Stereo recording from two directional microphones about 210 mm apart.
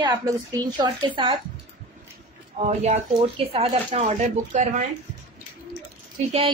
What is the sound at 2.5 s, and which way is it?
Speech, 30° right (ahead or behind).